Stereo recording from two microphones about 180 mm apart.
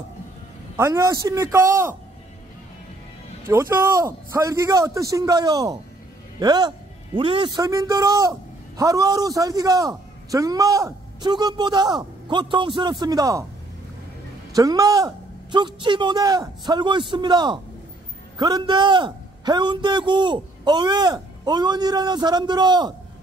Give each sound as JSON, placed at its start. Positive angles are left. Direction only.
{"t": 0.7, "sound": "a man's voice", "side_deg": -15}
{"t": 3.4, "sound": "a man's voice", "side_deg": -15}
{"t": 14.5, "sound": "a man's voice", "side_deg": -20}